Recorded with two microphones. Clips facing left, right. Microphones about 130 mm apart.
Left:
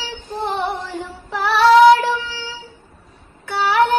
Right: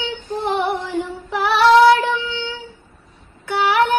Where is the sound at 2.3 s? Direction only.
20° right (ahead or behind).